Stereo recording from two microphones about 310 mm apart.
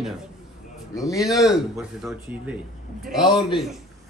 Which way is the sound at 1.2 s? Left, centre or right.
Centre.